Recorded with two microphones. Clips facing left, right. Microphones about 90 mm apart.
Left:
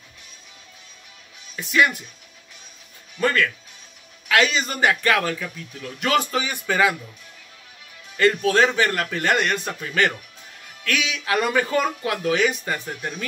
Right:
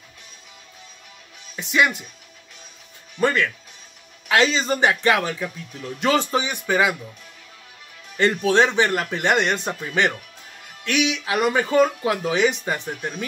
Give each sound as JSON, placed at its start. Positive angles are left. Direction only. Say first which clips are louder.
{"t": 1.6, "sound": "a man's voice", "louder": "even", "side_deg": -20}
{"t": 3.2, "sound": "a man's voice", "louder": "right 1 dB", "side_deg": -20}
{"t": 8.2, "sound": "a man's voice", "louder": "even", "side_deg": -20}
{"t": 12.9, "sound": "speech", "louder": "right 1 dB", "side_deg": 0}